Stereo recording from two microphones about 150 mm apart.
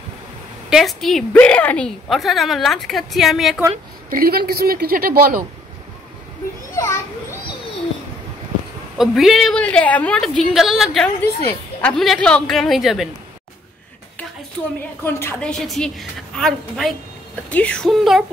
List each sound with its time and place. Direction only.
0.7 s a woman's voice: centre (ahead or behind)
4.1 s a woman's voice: 85° right
6.7 s children playing: 20° left (ahead or behind)
8.9 s a woman's voice: centre (ahead or behind)
15.0 s a woman's voice: 15° left (ahead or behind)
15.6 s a woman's voice: centre (ahead or behind)